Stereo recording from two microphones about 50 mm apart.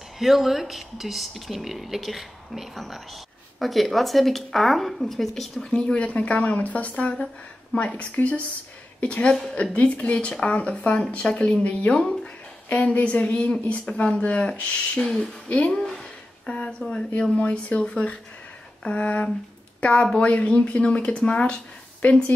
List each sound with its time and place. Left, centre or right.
0.2 s speech: centre
5.7 s a woman's voice: centre
12.6 s a woman's voice: left
15.7 s a sound: centre
17.2 s a woman's voice: left